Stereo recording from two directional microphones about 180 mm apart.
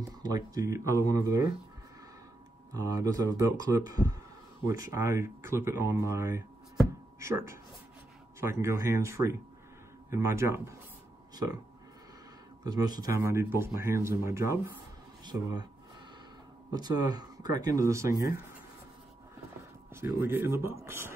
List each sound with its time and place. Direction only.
0.2 s speech: 20° right (ahead or behind)
2.7 s speech: 20° right (ahead or behind)
12.6 s speech: 20° right (ahead or behind)
16.7 s speech: 20° right (ahead or behind)
19.9 s speech: 15° right (ahead or behind)